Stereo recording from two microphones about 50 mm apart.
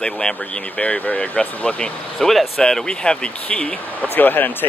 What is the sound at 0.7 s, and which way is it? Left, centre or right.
Speech, left.